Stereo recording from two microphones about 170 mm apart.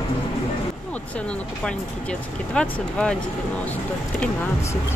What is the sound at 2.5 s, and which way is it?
Speech, 5° left (ahead or behind).